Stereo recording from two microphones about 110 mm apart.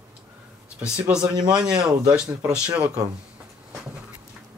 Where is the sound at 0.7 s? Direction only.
10° right (ahead or behind).